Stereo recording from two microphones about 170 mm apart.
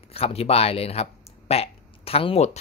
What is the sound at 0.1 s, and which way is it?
Speech, 35° left (ahead or behind).